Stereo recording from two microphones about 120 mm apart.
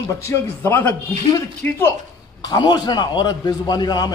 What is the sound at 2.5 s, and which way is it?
A man's voice, 35° left (ahead or behind).